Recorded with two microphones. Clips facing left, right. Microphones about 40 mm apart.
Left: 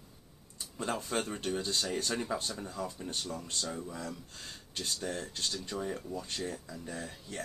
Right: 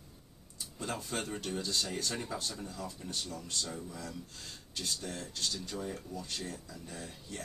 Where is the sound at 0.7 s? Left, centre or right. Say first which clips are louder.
Left 4 dB; left.